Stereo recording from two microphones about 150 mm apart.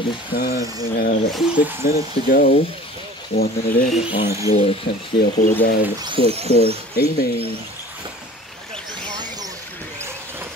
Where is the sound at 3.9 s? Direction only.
35° left (ahead or behind).